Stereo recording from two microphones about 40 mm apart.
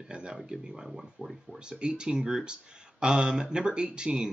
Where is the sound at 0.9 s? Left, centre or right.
Centre.